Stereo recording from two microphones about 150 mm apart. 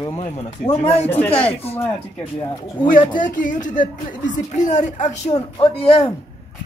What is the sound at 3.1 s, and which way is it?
Speech, 60° left (ahead or behind).